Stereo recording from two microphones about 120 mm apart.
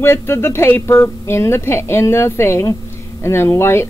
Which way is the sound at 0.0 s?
20° left (ahead or behind).